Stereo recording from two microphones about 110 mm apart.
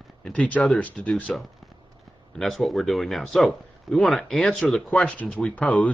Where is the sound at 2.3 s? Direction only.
Centre (ahead or behind).